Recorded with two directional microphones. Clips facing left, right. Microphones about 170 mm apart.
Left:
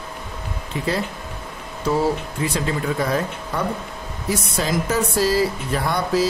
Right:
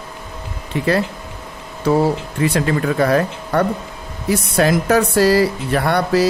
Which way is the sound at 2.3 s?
65° right (ahead or behind).